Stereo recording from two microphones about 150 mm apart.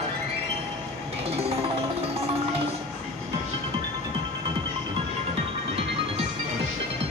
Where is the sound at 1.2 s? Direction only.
45° right (ahead or behind).